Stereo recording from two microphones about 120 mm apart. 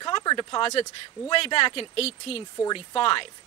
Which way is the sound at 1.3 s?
50° left (ahead or behind).